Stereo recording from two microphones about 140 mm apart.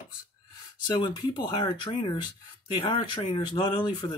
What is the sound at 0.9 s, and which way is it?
Speech, 30° left (ahead or behind).